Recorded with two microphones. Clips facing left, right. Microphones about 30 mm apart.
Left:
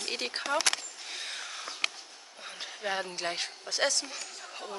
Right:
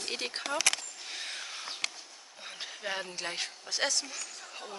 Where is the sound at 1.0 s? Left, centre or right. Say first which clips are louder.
Left 1 dB; centre.